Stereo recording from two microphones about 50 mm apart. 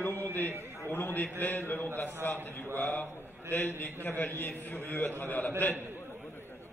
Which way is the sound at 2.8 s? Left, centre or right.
Left.